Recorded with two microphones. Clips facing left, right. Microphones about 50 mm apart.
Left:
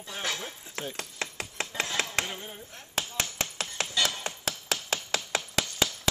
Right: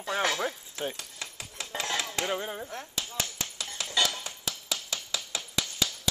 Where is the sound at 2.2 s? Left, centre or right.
Right.